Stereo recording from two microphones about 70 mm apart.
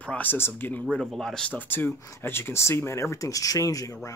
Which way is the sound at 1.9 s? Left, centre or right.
Left.